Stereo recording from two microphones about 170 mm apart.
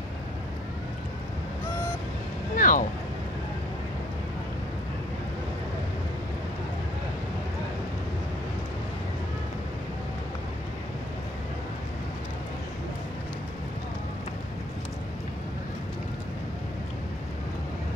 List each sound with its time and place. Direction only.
2.5 s vehicle: 50° left (ahead or behind)